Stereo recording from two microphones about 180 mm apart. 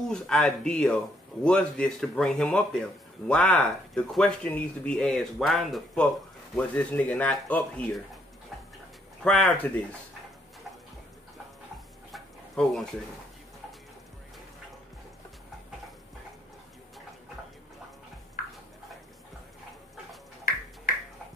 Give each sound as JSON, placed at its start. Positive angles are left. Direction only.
{"t": 0.1, "sound": "speech", "side_deg": 5}
{"t": 9.2, "sound": "speech", "side_deg": 5}
{"t": 12.1, "sound": "a sound", "side_deg": 0}
{"t": 18.4, "sound": "tick-tock", "side_deg": 50}